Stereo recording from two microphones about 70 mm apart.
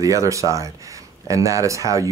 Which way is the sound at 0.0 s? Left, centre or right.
Right.